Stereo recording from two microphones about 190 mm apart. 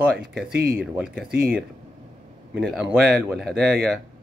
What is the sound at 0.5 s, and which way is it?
Speech, 50° right (ahead or behind).